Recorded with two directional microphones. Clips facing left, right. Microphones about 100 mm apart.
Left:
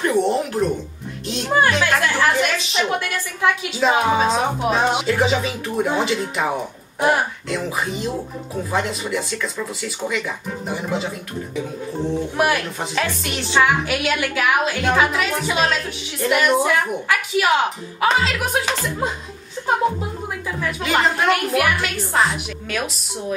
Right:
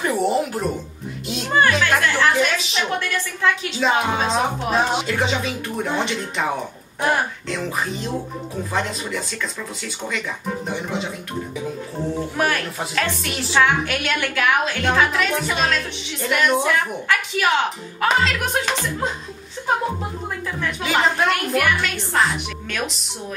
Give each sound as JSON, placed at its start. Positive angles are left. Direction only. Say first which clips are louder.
{"t": 0.0, "sound": "a sound", "louder": "left 1 dB", "side_deg": -5}
{"t": 1.6, "sound": "chatter", "louder": "right 1 dB", "side_deg": 10}
{"t": 2.5, "sound": "a woman's voice", "louder": "left 2 dB", "side_deg": 0}
{"t": 12.4, "sound": "a woman's voice", "louder": "left 2 dB", "side_deg": 10}
{"t": 20.6, "sound": "a woman's voice", "louder": "left 1 dB", "side_deg": 0}